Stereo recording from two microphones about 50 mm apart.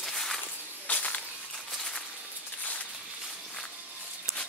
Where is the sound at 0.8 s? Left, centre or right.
Left.